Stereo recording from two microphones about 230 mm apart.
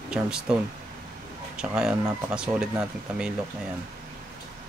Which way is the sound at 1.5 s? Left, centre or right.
Centre.